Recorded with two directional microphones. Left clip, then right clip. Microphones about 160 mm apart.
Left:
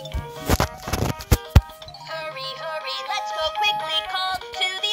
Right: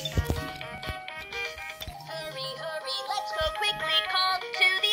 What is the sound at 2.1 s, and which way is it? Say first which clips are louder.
Music: left 6 dB; 10° left (ahead or behind).